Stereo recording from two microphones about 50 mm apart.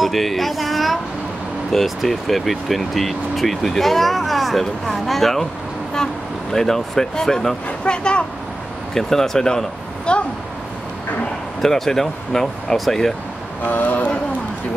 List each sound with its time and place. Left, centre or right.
0.0 s speech: centre
6.5 s speech: centre
8.9 s speech: centre
11.6 s speech: centre
13.7 s speech: left